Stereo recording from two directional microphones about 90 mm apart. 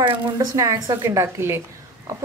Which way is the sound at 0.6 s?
35° right (ahead or behind).